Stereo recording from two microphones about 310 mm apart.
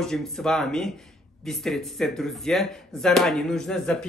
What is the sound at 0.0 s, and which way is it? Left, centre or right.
Speech, centre.